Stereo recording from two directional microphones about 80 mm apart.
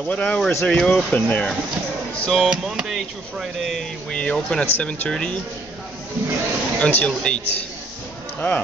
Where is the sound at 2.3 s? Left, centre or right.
Centre.